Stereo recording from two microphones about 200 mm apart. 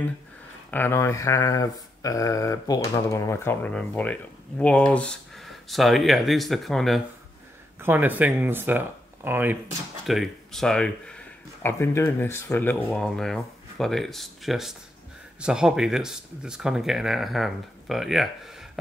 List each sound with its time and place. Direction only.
0.7 s speech: 10° left (ahead or behind)
7.8 s speech: 10° right (ahead or behind)